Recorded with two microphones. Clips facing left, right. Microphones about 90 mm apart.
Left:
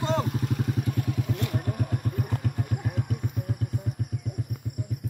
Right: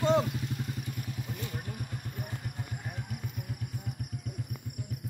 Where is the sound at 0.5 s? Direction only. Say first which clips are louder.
Left 9 dB; 80° left.